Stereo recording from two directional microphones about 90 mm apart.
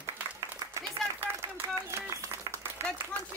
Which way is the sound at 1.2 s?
25° right (ahead or behind).